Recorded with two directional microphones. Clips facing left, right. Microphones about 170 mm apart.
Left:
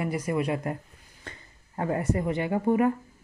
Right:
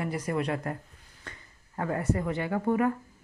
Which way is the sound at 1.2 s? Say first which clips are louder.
Left 2 dB; 25° left (ahead or behind).